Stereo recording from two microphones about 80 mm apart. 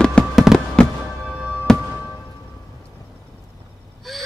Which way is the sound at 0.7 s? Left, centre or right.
Centre.